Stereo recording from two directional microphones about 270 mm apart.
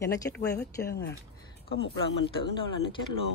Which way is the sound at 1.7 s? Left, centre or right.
Left.